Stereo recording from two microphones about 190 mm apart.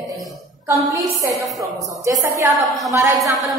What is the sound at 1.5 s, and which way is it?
A woman's voice, 20° right (ahead or behind).